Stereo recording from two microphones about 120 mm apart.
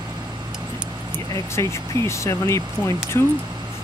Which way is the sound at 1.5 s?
25° left (ahead or behind).